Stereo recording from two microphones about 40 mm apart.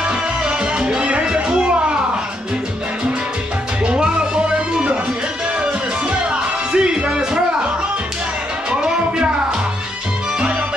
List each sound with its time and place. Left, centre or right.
0.0 s music: right
3.8 s music: right
6.7 s music: right